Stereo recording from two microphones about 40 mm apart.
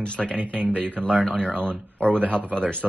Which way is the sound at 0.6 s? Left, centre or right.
Right.